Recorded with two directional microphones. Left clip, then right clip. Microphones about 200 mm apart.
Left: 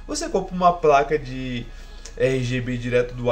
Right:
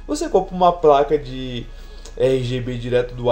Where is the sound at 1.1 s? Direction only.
Centre (ahead or behind).